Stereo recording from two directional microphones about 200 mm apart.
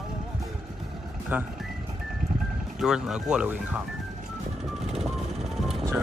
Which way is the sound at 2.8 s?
5° right (ahead or behind).